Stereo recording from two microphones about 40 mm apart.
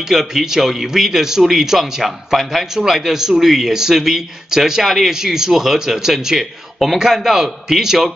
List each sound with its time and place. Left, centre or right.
0.1 s speech: centre
4.8 s speech: centre
5.2 s speech: centre